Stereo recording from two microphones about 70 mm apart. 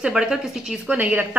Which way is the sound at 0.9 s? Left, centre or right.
Right.